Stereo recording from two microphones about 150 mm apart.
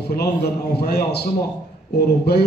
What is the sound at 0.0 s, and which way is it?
A man's voice, 90° left.